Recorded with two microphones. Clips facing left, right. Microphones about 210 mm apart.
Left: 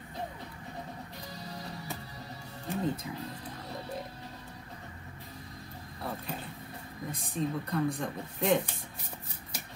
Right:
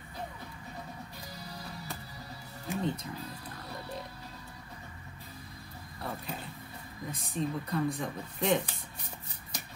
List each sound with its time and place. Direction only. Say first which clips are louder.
1.5 s music: left 2 dB; 20° left (ahead or behind)
2.7 s speech: left 1 dB; centre (ahead or behind)
5.9 s music: left 1 dB; centre (ahead or behind)
7.1 s speech: left 1 dB; centre (ahead or behind)